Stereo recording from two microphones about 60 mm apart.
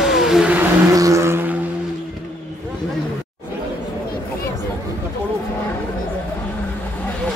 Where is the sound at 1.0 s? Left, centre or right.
Right.